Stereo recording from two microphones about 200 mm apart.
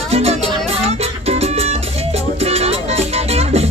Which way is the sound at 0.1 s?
30° right (ahead or behind).